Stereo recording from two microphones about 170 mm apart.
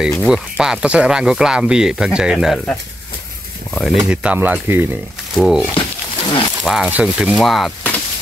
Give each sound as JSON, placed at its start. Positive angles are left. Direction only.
{"t": 0.2, "sound": "speech", "side_deg": -5}
{"t": 3.7, "sound": "speech", "side_deg": 0}
{"t": 5.8, "sound": "a sound", "side_deg": 25}
{"t": 6.6, "sound": "speech", "side_deg": -5}